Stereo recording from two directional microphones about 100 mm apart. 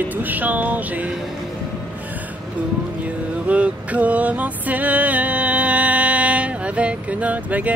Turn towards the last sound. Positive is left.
turn(degrees=-15)  # may be behind; listen again after turning